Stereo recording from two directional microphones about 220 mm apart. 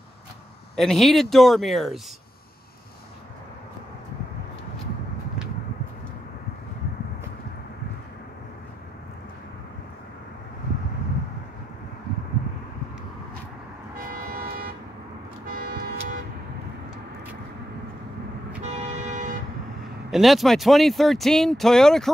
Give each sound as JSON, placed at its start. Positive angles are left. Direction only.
{"t": 0.7, "sound": "speech", "side_deg": 0}
{"t": 14.1, "sound": "toot", "side_deg": -40}
{"t": 15.4, "sound": "vehicle", "side_deg": -40}
{"t": 18.6, "sound": "vehicle", "side_deg": -30}
{"t": 20.1, "sound": "speech", "side_deg": 0}